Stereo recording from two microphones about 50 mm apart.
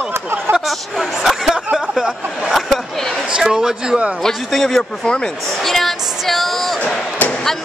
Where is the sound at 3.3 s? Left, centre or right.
Centre.